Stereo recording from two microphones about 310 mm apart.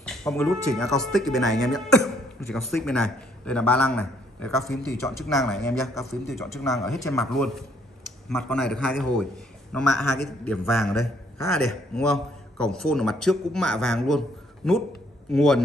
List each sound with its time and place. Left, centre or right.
0.0 s a man's voice: centre